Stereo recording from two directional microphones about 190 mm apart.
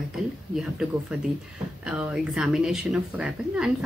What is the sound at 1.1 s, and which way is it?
Speech, 5° right (ahead or behind).